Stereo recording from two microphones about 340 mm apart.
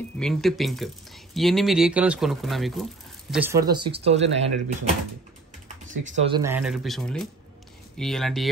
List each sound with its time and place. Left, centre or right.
0.2 s speech: centre
5.9 s speech: right
6.4 s speech: centre